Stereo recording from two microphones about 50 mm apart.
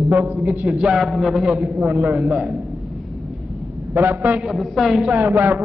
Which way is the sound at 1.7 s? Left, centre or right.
Right.